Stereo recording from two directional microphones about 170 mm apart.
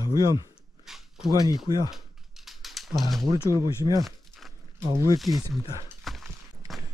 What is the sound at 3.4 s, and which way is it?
Speech, 15° right (ahead or behind).